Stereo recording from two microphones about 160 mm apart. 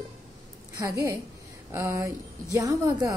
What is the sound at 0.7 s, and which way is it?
A woman's voice, 25° right (ahead or behind).